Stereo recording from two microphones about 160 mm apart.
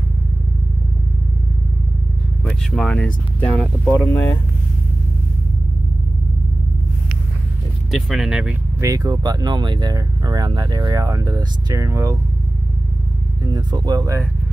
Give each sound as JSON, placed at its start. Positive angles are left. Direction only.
{"t": 2.4, "sound": "speech", "side_deg": 5}
{"t": 7.9, "sound": "speech", "side_deg": -5}
{"t": 8.8, "sound": "speech", "side_deg": -20}
{"t": 13.5, "sound": "speech", "side_deg": -25}